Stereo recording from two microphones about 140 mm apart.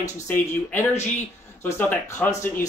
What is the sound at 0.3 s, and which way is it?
Speech, 15° left (ahead or behind).